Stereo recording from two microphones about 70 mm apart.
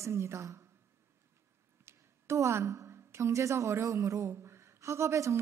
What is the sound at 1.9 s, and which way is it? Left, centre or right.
A woman's voice, right.